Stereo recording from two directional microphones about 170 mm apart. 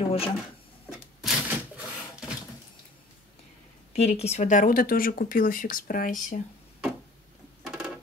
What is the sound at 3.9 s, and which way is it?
Speech, 40° left (ahead or behind).